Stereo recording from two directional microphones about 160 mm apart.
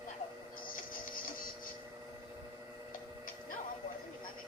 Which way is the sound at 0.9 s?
60° left (ahead or behind).